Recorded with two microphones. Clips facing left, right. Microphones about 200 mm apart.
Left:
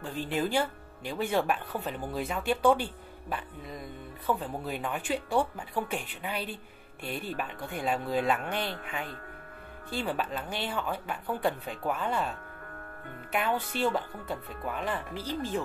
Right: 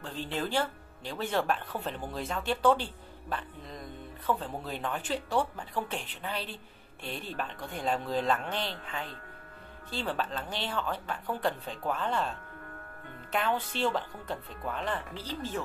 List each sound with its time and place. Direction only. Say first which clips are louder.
0.0 s speech: left 4 dB; 10° left (ahead or behind)